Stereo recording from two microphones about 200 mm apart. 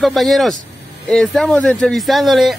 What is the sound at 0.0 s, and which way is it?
Speech, centre (ahead or behind).